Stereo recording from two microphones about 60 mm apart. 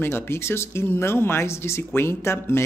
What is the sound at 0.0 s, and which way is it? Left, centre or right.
Speech, left.